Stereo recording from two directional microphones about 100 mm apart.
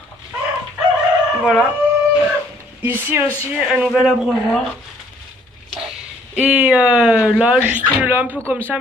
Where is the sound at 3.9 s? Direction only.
5° right (ahead or behind).